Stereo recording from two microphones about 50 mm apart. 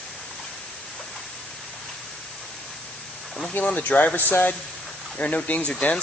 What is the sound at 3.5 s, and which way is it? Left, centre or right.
Speech, left.